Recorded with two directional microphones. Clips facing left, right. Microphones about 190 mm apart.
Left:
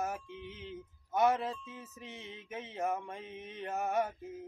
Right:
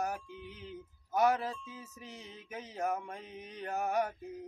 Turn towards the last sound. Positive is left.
turn(degrees=0)  # may be behind; listen again after turning